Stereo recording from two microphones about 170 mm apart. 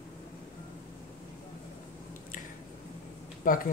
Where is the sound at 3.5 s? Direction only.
55° left (ahead or behind).